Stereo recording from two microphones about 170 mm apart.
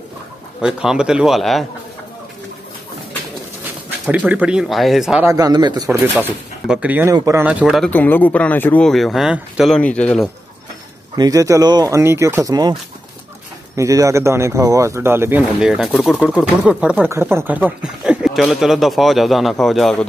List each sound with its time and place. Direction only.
0.6 s speech: 5° right (ahead or behind)
4.0 s speech: 10° right (ahead or behind)
5.2 s speech: 20° right (ahead or behind)
6.1 s speech: 10° right (ahead or behind)
7.9 s speech: 10° left (ahead or behind)
11.1 s speech: 20° right (ahead or behind)
13.7 s speech: 20° right (ahead or behind); by 20.1 s centre (ahead or behind)